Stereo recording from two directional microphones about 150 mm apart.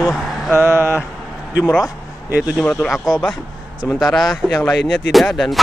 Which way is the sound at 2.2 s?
10° right (ahead or behind).